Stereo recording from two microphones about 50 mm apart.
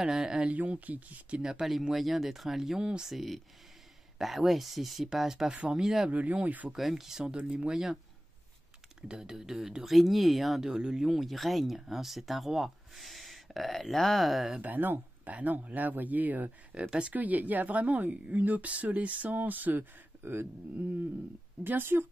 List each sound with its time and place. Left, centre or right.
0.0 s speech: centre
0.5 s speech: right
1.4 s speech: centre
6.0 s speech: right
6.8 s speech: centre
7.7 s speech: centre
9.0 s speech: centre
10.6 s speech: centre
11.1 s speech: centre
14.6 s speech: right
21.6 s speech: right